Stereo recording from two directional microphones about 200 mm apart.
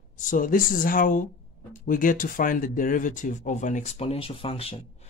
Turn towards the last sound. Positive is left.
turn(degrees=30)  # may be behind; listen again after turning